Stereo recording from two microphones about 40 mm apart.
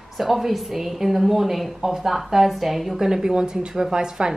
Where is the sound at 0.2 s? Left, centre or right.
Centre.